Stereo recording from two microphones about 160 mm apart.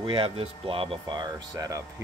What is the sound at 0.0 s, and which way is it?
Speech, 35° right (ahead or behind).